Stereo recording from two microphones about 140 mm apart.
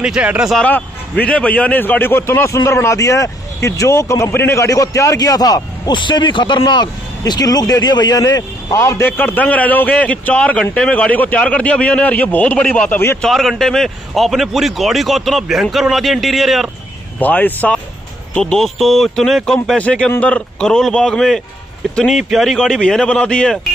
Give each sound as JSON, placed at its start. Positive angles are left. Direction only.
{"t": 0.0, "sound": "a man's voice", "side_deg": -10}
{"t": 0.6, "sound": "a man's voice", "side_deg": 10}
{"t": 13.2, "sound": "a man's voice", "side_deg": 0}
{"t": 17.2, "sound": "a man's voice", "side_deg": 10}